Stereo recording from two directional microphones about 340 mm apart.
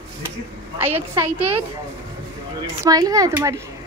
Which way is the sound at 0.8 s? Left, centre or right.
Centre.